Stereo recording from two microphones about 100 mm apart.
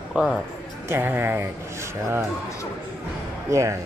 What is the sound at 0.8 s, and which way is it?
Speech, 20° right (ahead or behind).